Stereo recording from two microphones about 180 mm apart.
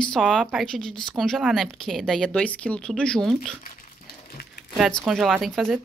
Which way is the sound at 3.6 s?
50° left (ahead or behind).